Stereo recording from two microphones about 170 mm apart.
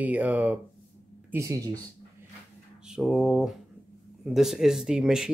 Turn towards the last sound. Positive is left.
turn(degrees=-5)  # may be behind; listen again after turning